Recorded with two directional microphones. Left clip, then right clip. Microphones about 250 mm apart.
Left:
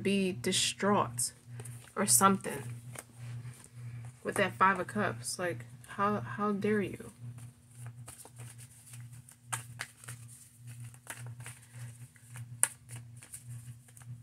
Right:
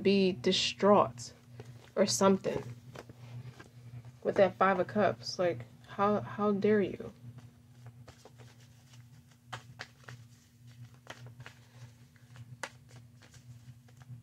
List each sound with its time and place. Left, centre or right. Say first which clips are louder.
0.0 s speech: right 4 dB; centre
4.2 s speech: right 2 dB; centre
9.5 s a sound: left 4 dB; centre